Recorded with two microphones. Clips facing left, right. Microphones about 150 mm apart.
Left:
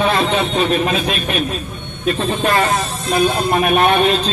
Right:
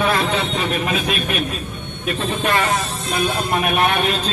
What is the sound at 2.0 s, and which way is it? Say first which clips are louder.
Speech: left 4 dB; 35° left (ahead or behind).